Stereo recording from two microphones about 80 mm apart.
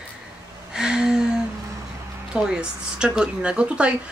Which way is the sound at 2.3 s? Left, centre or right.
Centre.